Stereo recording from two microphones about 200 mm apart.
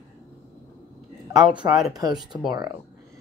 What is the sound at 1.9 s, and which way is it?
Speech, 20° right (ahead or behind).